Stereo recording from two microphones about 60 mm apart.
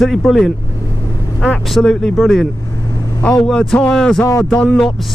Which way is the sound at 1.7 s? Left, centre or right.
Centre.